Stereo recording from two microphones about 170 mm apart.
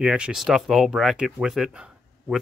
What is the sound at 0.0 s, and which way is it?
Speech, 5° right (ahead or behind).